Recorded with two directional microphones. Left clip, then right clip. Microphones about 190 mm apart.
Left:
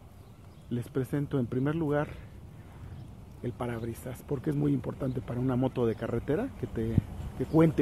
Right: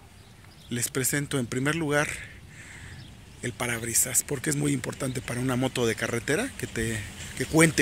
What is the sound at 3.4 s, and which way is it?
Speech, 15° right (ahead or behind).